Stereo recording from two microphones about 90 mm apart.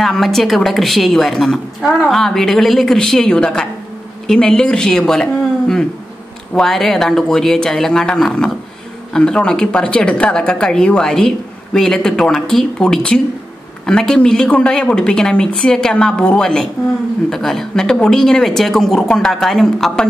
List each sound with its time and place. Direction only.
0.0 s a woman's voice: 5° left (ahead or behind)